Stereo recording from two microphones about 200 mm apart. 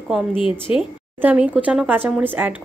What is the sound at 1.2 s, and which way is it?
Speech, 5° right (ahead or behind).